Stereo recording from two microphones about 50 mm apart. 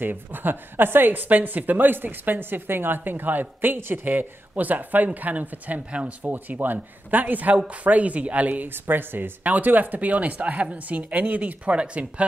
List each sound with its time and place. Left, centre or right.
0.0 s speech: right
6.3 s speech: right
8.7 s speech: right